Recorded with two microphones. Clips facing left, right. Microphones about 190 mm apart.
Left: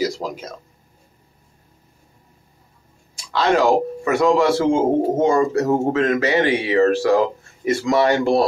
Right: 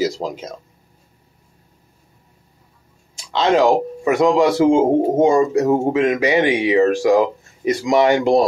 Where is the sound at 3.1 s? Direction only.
20° right (ahead or behind).